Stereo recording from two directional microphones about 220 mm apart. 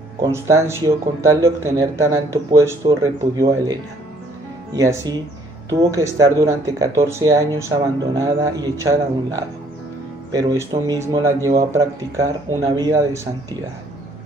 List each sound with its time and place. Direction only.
0.2 s speech: 15° right (ahead or behind)
4.7 s speech: 15° right (ahead or behind)